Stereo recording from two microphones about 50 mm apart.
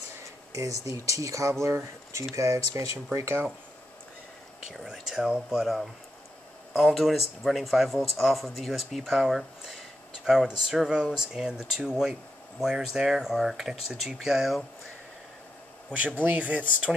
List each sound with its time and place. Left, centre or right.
0.5 s speech: right
2.3 s speech: right
4.9 s speech: centre
16.3 s speech: right